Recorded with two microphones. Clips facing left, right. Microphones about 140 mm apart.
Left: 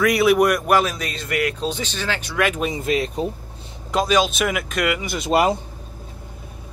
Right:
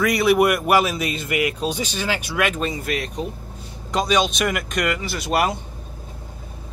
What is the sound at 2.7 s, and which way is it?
Speech, 25° left (ahead or behind).